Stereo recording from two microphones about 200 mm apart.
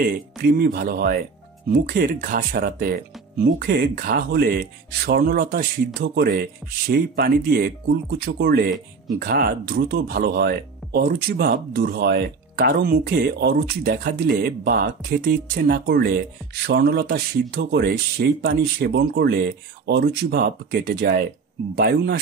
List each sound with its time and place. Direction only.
0.0 s speech: 50° right (ahead or behind)